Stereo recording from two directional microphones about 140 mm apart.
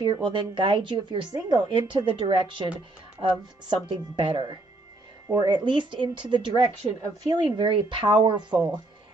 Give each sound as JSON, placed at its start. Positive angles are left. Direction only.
{"t": 0.0, "sound": "speech", "side_deg": -35}